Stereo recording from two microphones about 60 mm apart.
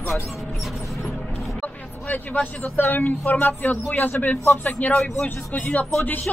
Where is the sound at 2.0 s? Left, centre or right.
Left.